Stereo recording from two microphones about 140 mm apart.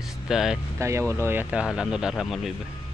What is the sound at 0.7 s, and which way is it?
Speech, 20° right (ahead or behind).